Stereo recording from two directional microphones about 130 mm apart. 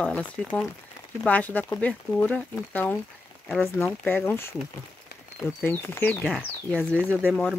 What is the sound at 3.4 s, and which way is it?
Speech, centre (ahead or behind).